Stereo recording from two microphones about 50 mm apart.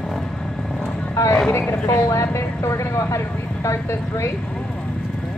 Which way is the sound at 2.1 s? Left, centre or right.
Left.